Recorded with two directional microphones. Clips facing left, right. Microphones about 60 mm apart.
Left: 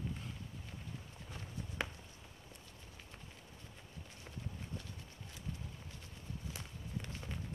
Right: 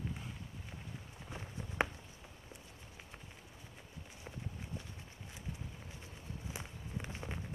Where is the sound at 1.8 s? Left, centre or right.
Right.